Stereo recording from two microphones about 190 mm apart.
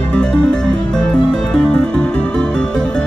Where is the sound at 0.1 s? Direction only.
5° left (ahead or behind).